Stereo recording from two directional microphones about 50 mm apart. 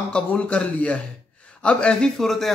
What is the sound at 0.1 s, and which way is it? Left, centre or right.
Speech, left.